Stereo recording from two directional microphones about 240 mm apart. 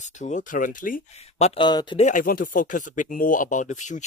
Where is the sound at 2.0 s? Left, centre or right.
Left.